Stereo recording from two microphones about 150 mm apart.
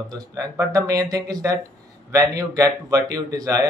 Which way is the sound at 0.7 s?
25° right (ahead or behind).